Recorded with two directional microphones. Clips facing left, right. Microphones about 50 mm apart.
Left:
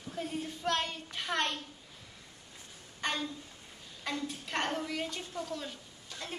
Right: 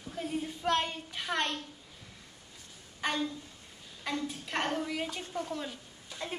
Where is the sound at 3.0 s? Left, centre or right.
Centre.